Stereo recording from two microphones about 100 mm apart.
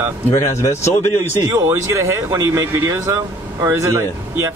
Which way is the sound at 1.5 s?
30° right (ahead or behind).